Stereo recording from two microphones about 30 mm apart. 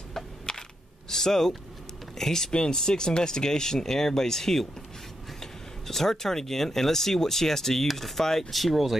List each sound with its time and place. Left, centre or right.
0.1 s a sound: centre
2.1 s speech: centre
2.5 s speech: left
8.5 s speech: centre